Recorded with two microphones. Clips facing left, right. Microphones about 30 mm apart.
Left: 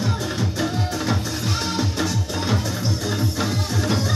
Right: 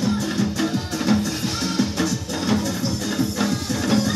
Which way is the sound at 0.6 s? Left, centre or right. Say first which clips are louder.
Right 1 dB; centre.